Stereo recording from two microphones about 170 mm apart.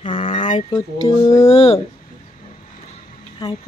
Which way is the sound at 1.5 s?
35° left (ahead or behind).